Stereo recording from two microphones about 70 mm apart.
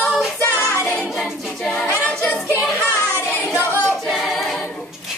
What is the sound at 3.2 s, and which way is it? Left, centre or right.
Child singing, left.